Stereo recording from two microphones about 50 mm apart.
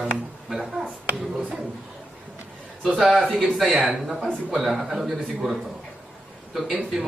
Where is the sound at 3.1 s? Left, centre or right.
Centre.